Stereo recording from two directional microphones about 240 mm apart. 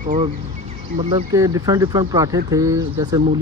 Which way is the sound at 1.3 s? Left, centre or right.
Centre.